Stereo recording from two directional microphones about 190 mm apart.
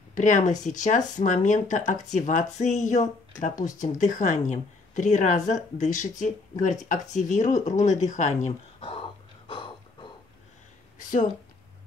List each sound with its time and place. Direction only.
0.1 s speech: 40° left (ahead or behind)
11.1 s speech: 45° left (ahead or behind)